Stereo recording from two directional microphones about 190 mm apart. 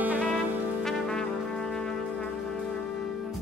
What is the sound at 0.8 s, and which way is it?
Brass instrument, centre (ahead or behind).